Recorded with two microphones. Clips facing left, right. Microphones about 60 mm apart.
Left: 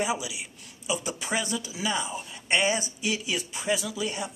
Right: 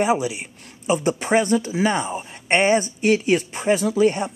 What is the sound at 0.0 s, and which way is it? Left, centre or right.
A man's voice, right.